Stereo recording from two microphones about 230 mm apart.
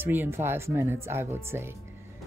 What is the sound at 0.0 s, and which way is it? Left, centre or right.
Speech, centre.